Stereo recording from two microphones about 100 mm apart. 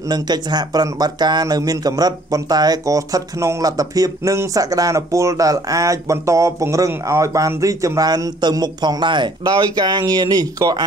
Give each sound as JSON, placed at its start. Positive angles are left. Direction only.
{"t": 0.1, "sound": "speech", "side_deg": -45}